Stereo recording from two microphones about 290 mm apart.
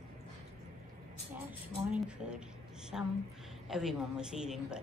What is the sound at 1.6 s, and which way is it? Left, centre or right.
A woman's voice, centre.